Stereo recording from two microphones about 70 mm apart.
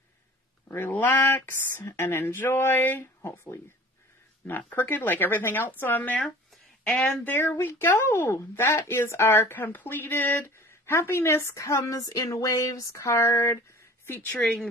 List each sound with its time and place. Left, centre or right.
0.7 s a woman's voice: left
14.4 s speech: centre